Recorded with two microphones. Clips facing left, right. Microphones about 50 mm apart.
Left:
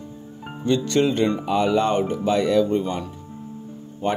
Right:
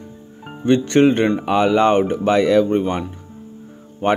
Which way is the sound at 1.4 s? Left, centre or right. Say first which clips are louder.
Right 5 dB; right.